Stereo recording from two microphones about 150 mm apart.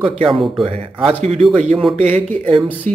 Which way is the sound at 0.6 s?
40° right (ahead or behind).